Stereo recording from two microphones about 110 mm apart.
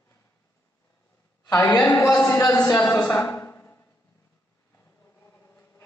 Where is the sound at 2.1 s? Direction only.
5° left (ahead or behind).